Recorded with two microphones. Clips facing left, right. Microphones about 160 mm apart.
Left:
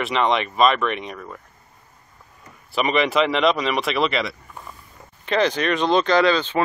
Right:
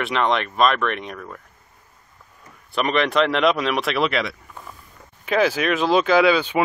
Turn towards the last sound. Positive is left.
turn(degrees=-10)  # may be behind; listen again after turning